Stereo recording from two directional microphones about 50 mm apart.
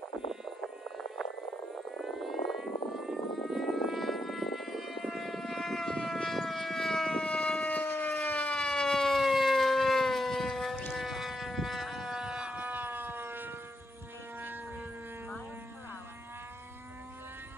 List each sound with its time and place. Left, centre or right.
2.0 s civil defense siren: centre
3.1 s vehicle: centre
7.2 s siren: left
8.6 s civil defense siren: centre
11.0 s a sound: centre
12.2 s a sound: centre
12.5 s siren: right